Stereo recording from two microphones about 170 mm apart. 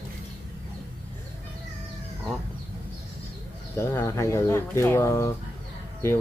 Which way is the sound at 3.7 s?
15° left (ahead or behind).